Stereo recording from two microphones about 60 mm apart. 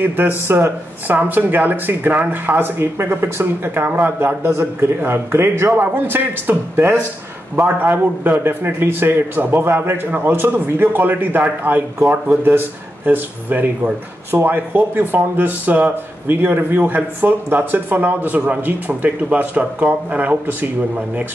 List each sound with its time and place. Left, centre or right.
0.0 s speech: right
0.5 s speech: right
1.0 s speech: right